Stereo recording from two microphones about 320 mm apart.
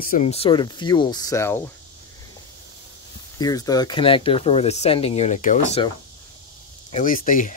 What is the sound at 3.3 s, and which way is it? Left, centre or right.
Speech, centre.